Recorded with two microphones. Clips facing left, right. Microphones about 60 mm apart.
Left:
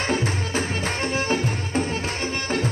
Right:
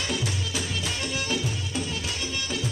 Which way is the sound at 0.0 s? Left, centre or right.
Left.